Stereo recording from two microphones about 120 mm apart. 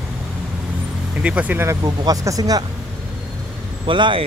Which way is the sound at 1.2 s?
10° right (ahead or behind).